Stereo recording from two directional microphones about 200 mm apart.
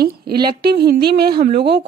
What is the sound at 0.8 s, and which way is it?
Speech, 50° right (ahead or behind).